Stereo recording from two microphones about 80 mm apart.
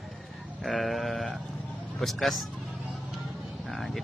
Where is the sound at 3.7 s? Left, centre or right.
Centre.